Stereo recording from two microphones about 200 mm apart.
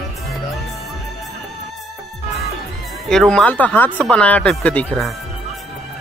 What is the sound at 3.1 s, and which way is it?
Speech, 5° left (ahead or behind).